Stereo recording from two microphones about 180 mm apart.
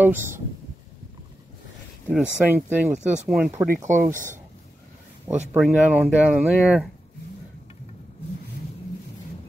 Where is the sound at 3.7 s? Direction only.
45° right (ahead or behind).